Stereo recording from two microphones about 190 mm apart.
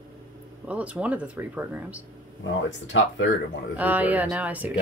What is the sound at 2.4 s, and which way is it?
Speech, 90° left.